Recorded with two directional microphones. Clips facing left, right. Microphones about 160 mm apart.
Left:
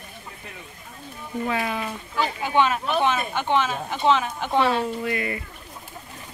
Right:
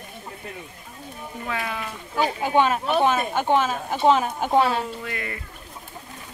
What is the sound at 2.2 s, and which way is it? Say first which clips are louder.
Speech: right 1 dB; 40° right (ahead or behind).